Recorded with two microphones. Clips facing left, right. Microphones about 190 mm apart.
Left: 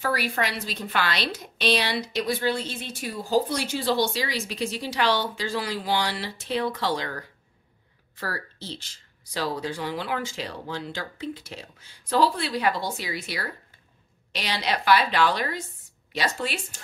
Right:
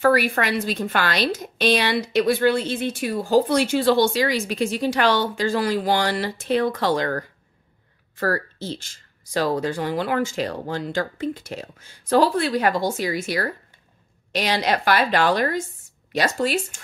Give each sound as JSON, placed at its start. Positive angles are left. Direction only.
{"t": 0.0, "sound": "a woman's voice", "side_deg": -55}